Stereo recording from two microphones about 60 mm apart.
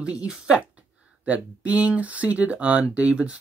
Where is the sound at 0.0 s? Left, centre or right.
Centre.